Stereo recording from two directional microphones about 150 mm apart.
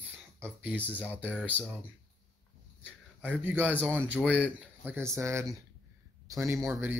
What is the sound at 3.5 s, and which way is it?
Speech, 10° right (ahead or behind).